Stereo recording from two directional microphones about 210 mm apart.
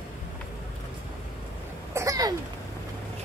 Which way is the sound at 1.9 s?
15° right (ahead or behind).